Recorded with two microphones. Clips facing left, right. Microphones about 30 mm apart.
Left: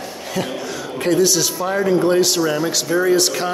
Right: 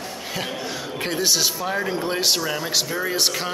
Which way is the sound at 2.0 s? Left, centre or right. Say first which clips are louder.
Left 6 dB; centre.